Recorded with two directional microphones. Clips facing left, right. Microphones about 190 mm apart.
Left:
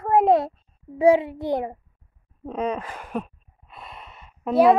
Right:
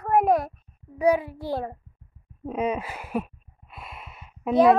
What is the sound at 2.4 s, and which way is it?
Gasp, 10° right (ahead or behind).